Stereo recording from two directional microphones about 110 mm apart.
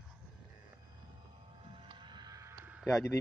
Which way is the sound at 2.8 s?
25° left (ahead or behind).